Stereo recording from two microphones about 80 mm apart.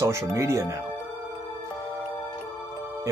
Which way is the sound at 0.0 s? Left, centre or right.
Right.